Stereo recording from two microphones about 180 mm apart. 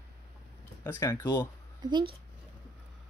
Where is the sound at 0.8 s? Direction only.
15° left (ahead or behind).